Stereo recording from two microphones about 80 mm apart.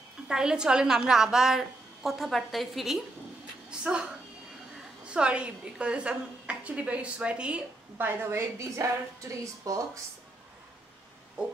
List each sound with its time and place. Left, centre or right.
0.3 s a woman's voice: centre
3.8 s a woman's voice: centre
8.0 s speech: right